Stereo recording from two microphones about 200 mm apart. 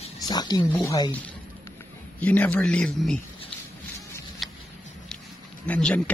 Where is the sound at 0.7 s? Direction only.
15° left (ahead or behind).